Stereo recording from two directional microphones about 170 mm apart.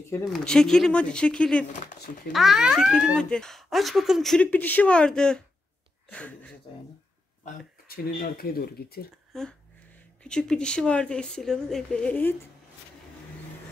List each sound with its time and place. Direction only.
0.3 s speech: 5° left (ahead or behind)
1.7 s speech: 50° left (ahead or behind)
2.3 s speech: centre (ahead or behind)
7.4 s speech: 55° left (ahead or behind)
9.3 s speech: 5° left (ahead or behind)